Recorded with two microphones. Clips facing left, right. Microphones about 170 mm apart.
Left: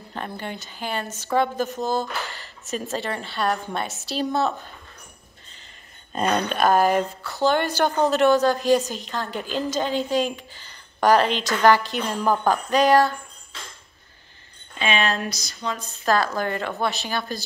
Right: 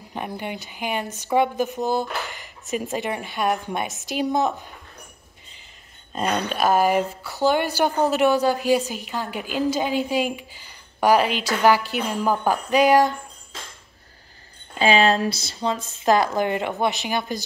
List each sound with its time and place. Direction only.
0.1 s a woman's voice: 15° right (ahead or behind)
6.2 s a woman's voice: 5° right (ahead or behind)
14.8 s speech: 35° right (ahead or behind)